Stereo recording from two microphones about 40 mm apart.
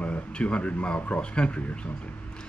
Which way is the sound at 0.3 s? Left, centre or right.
Left.